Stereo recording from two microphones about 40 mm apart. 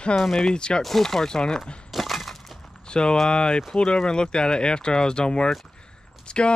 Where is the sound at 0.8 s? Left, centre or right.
Centre.